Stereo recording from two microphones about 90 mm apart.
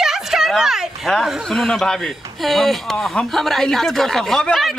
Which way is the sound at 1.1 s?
Centre (ahead or behind).